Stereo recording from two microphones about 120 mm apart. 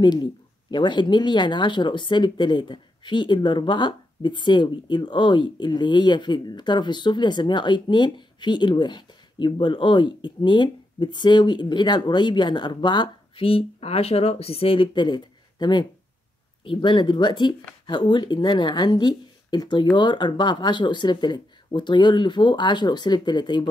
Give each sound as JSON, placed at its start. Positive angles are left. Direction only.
{"t": 0.0, "sound": "speech", "side_deg": 40}